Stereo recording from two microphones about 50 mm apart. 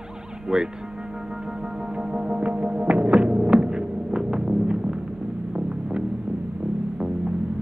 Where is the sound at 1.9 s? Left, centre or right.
Centre.